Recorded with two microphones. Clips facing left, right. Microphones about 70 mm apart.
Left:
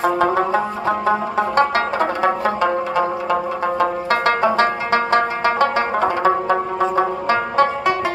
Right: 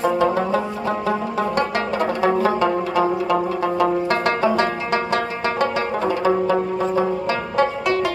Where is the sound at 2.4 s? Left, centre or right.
Centre.